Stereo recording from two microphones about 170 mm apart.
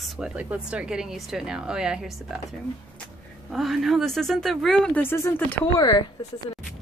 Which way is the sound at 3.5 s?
Centre (ahead or behind).